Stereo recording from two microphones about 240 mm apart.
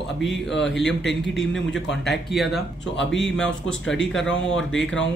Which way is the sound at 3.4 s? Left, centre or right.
Left.